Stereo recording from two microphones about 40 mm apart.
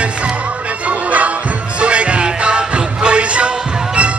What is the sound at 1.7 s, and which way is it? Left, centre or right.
Music, right.